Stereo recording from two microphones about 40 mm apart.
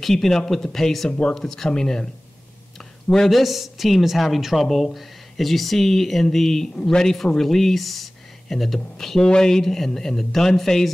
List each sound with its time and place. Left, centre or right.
0.0 s a man's voice: centre
3.1 s a man's voice: centre
6.7 s a man's voice: left
7.0 s a man's voice: centre